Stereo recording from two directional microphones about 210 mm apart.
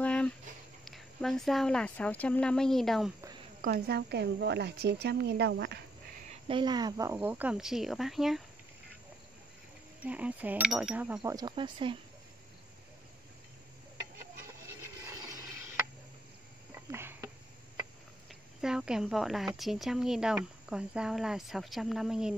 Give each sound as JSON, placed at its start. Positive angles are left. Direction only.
{"t": 0.0, "sound": "a sound", "side_deg": 5}
{"t": 0.8, "sound": "speech", "side_deg": 0}
{"t": 3.6, "sound": "a woman's voice", "side_deg": -50}
{"t": 6.4, "sound": "speech", "side_deg": -20}
{"t": 10.0, "sound": "speech", "side_deg": -5}
{"t": 15.0, "sound": "a sound", "side_deg": -15}
{"t": 16.9, "sound": "insect", "side_deg": -10}
{"t": 18.3, "sound": "speech", "side_deg": 0}